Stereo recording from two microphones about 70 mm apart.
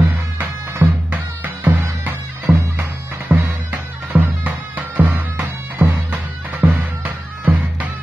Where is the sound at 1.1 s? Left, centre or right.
Right.